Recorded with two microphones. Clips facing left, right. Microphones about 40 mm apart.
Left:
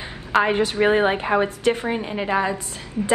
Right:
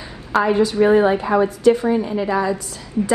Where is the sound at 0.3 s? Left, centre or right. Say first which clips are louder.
Right 2 dB; left.